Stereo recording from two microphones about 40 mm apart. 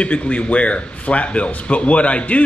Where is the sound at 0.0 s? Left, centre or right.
Left.